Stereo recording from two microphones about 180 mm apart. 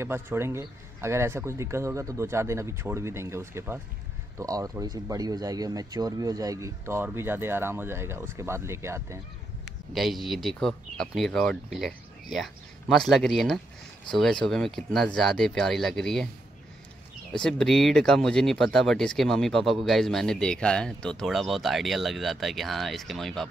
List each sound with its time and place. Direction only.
0.0 s speech: 15° right (ahead or behind)
9.9 s speech: centre (ahead or behind)
17.3 s speech: 5° left (ahead or behind)